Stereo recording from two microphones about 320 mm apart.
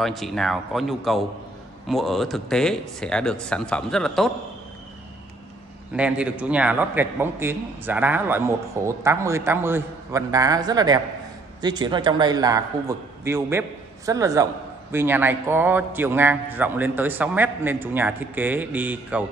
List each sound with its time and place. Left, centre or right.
0.0 s speech: centre
5.9 s a man's voice: centre